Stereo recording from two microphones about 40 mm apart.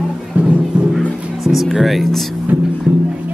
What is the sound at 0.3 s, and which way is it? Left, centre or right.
Music, right.